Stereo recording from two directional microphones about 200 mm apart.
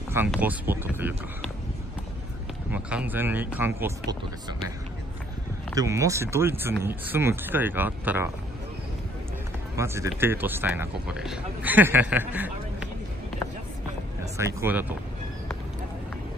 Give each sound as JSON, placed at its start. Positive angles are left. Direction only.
{"t": 0.3, "sound": "speech", "side_deg": -10}
{"t": 2.7, "sound": "speech", "side_deg": -5}
{"t": 5.8, "sound": "speech", "side_deg": -15}
{"t": 9.8, "sound": "speech", "side_deg": -15}
{"t": 14.3, "sound": "speech", "side_deg": -15}